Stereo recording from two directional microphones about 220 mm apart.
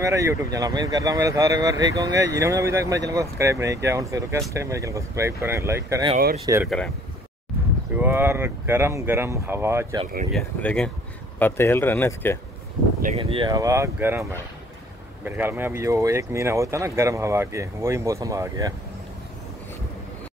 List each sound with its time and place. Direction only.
0.0 s speech: 15° right (ahead or behind)
8.0 s speech: 10° right (ahead or behind)
10.3 s speech: 5° left (ahead or behind)
13.0 s speech: 25° right (ahead or behind); by 14.2 s 10° right (ahead or behind)
15.2 s speech: 10° right (ahead or behind)